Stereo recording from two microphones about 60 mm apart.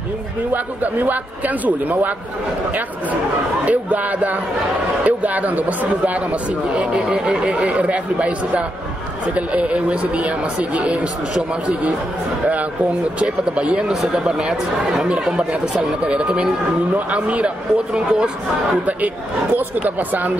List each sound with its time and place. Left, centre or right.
0.5 s speech: right
3.6 s speech: right
13.2 s speech: centre
19.5 s speech: right